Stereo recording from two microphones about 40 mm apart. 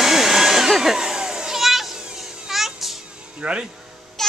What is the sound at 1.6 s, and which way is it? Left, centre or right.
Children playing, centre.